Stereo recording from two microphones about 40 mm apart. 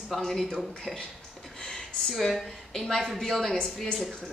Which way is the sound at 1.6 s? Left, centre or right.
Centre.